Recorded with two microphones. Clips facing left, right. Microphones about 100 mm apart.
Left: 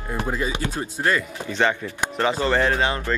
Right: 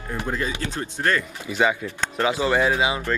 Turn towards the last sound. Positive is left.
turn(degrees=-10)  # may be behind; listen again after turning